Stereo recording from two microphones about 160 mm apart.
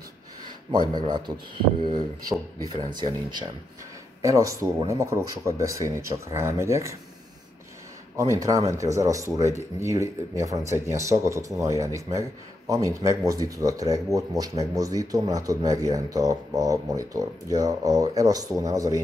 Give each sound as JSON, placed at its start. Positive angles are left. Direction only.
{"t": 1.0, "sound": "speech", "side_deg": -25}
{"t": 4.2, "sound": "speech", "side_deg": -20}
{"t": 8.2, "sound": "speech", "side_deg": -20}